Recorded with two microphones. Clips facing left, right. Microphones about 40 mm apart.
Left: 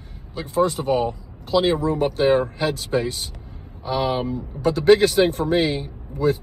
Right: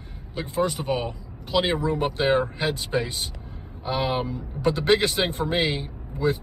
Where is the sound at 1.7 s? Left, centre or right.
Right.